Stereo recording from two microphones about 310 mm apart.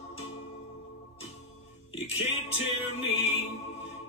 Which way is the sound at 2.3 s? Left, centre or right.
Left.